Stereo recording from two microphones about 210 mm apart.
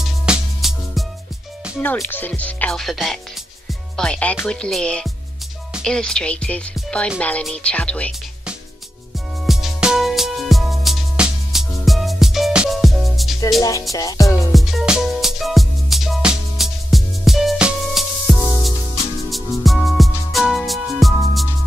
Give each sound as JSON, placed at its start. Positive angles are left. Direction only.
{"t": 0.0, "sound": "music", "side_deg": 0}
{"t": 1.8, "sound": "speech", "side_deg": 10}
{"t": 9.5, "sound": "music", "side_deg": 0}
{"t": 13.6, "sound": "speech", "side_deg": 15}
{"t": 13.9, "sound": "music", "side_deg": 15}
{"t": 14.5, "sound": "music", "side_deg": 0}